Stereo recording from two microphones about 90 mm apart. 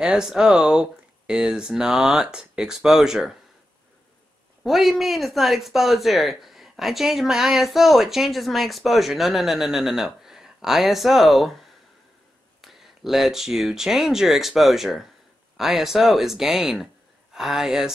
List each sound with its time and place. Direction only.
0.0 s speech: 5° right (ahead or behind)
4.6 s speech: centre (ahead or behind)
12.6 s speech: centre (ahead or behind)